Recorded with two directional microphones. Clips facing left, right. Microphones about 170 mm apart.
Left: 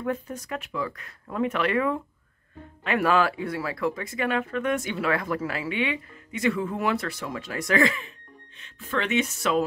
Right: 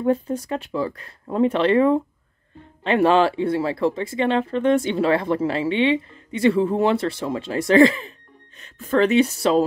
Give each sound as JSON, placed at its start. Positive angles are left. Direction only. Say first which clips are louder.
{"t": 0.0, "sound": "speech", "louder": "right 9 dB", "side_deg": -30}
{"t": 8.5, "sound": "speech", "louder": "right 10 dB", "side_deg": -40}